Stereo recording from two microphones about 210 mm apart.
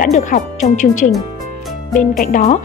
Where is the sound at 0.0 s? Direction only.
40° left (ahead or behind).